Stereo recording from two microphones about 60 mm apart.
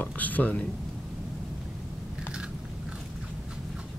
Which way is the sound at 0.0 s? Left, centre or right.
Left.